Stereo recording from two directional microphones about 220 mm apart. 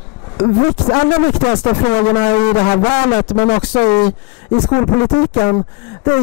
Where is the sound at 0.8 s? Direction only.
25° left (ahead or behind).